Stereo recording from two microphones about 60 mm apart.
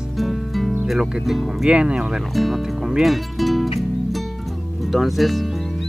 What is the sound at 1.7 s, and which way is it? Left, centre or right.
Speech, centre.